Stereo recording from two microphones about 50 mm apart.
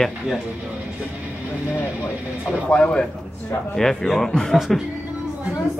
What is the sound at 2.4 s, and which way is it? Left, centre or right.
Speech, left.